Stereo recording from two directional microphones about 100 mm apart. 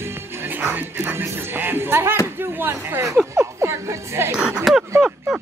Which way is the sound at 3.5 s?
25° right (ahead or behind).